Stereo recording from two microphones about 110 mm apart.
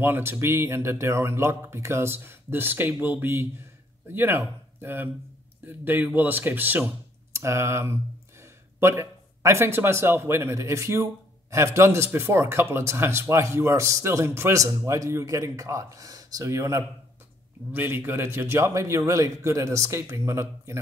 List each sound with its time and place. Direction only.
0.0 s speech: 20° right (ahead or behind)